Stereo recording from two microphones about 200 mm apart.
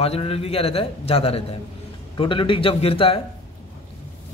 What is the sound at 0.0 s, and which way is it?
A man's voice, 30° left (ahead or behind).